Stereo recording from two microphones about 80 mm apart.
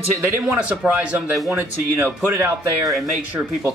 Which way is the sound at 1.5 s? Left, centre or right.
Right.